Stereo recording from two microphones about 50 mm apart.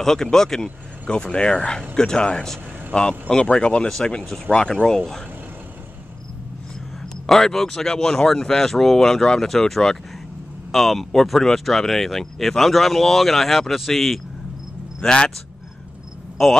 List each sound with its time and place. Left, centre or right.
0.0 s speech: centre
7.2 s speech: centre
15.0 s speech: centre
16.4 s speech: centre